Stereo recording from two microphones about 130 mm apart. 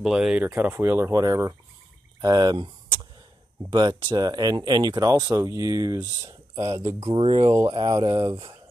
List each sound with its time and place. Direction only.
0.0 s speech: 5° right (ahead or behind); by 6.6 s 30° right (ahead or behind)
6.9 s speech: 50° right (ahead or behind); by 8.5 s 35° right (ahead or behind)